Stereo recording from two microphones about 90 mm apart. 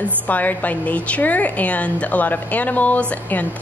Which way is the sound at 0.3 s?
20° left (ahead or behind).